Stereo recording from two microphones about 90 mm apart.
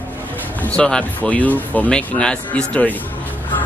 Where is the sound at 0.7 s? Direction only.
10° left (ahead or behind).